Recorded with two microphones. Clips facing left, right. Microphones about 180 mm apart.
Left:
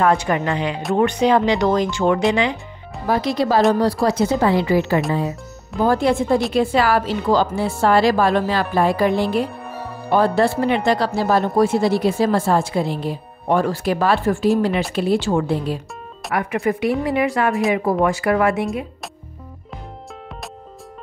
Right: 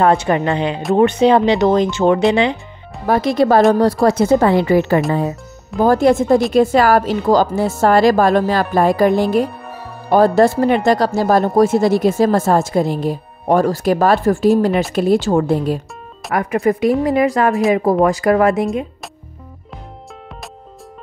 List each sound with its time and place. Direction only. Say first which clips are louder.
0.0 s speech: right 4 dB; 30° right (ahead or behind)
3.1 s a woman's voice: right 5 dB; 55° right (ahead or behind); by 18.7 s 40° right (ahead or behind)